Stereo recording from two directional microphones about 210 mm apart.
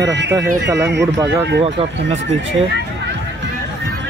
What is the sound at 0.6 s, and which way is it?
Speech, 15° right (ahead or behind).